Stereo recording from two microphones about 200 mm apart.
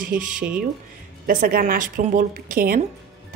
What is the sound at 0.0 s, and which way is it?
A woman's voice, 40° right (ahead or behind).